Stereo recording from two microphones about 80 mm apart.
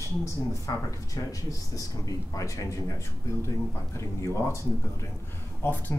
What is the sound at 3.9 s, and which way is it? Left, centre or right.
Speech, left.